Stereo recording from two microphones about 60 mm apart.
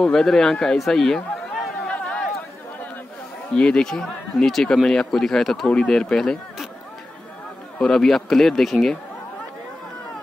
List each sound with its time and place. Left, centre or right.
0.0 s a man's voice: centre
1.8 s a sound: centre
3.5 s speech: centre
7.8 s speech: centre